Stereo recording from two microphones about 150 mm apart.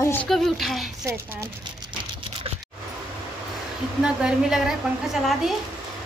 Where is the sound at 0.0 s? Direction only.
15° left (ahead or behind).